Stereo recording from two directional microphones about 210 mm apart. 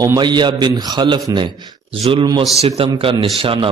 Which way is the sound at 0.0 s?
20° right (ahead or behind).